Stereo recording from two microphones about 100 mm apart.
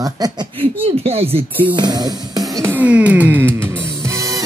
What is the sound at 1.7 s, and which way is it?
Music, 45° right (ahead or behind).